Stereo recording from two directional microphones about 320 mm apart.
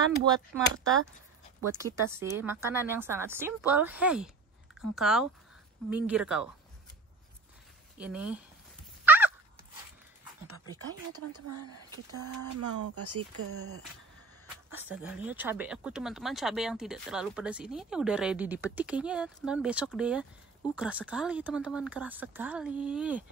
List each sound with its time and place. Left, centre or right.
1.6 s speech: centre
8.0 s speech: centre
9.0 s fowl: centre
10.5 s speech: right
14.9 s speech: centre